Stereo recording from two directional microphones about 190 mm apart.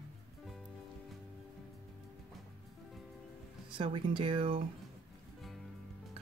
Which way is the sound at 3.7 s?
25° right (ahead or behind).